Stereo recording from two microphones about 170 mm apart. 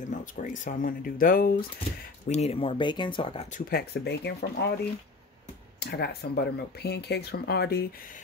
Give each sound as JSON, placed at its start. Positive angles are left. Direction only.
{"t": 0.0, "sound": "speech", "side_deg": 50}
{"t": 2.2, "sound": "speech", "side_deg": 40}
{"t": 3.5, "sound": "speech", "side_deg": 65}
{"t": 5.8, "sound": "speech", "side_deg": 75}